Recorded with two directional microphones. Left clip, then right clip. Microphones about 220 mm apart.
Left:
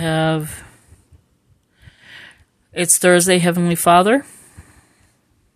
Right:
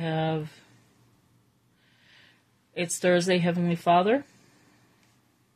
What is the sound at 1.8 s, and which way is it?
Sniff, 50° left (ahead or behind).